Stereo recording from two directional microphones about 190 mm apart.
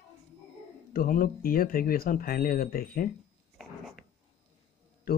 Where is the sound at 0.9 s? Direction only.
45° left (ahead or behind).